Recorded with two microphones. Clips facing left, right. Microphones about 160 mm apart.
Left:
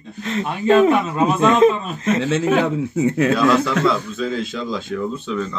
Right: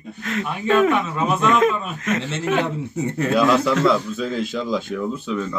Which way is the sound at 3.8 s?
5° right (ahead or behind).